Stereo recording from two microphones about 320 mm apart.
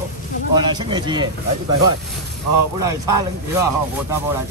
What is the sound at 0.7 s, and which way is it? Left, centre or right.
Speech, centre.